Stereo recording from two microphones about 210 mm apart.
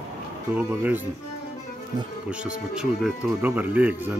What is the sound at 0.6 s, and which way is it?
Speech, 5° right (ahead or behind).